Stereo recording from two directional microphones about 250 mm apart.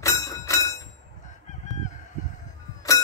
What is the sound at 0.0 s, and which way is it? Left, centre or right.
Bell, centre.